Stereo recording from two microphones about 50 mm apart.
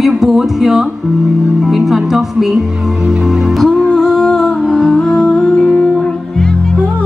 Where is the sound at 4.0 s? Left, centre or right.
Centre.